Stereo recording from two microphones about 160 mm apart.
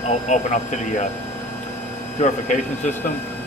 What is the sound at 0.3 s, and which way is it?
Speech, 50° left (ahead or behind).